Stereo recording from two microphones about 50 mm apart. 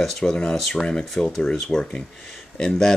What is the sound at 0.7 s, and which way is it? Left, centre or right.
Speech, centre.